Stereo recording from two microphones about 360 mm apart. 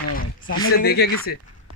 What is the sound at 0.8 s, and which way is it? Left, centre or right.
Speech, left.